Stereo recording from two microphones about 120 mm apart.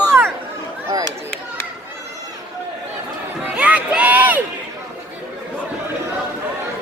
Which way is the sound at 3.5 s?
10° right (ahead or behind).